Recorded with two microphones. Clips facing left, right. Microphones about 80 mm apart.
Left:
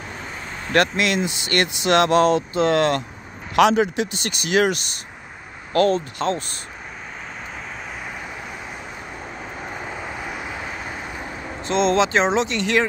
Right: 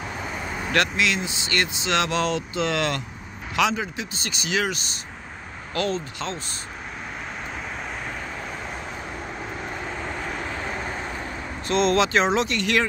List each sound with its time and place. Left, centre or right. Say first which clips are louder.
0.7 s speech: left 4 dB; left
3.5 s speech: left 8 dB; left
9.8 s vehicle: even; centre
11.6 s speech: left 2 dB; left